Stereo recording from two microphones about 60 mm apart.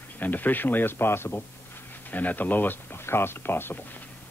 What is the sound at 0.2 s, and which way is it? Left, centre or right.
Speech, left.